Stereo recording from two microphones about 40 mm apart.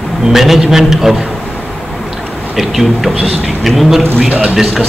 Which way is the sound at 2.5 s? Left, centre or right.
Centre.